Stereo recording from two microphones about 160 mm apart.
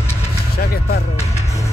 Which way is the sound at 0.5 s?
75° left (ahead or behind).